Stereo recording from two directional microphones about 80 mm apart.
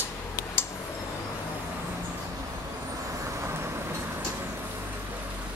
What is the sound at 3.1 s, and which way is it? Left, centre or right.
Vehicle, right.